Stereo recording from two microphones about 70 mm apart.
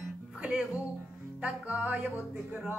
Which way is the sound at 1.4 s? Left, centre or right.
Centre.